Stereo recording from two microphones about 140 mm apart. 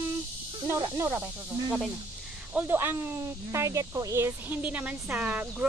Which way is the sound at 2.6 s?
20° right (ahead or behind).